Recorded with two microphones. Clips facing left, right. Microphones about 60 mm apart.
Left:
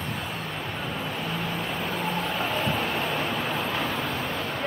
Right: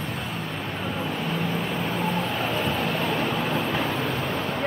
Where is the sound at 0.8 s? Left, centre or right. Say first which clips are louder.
Right 4 dB; centre.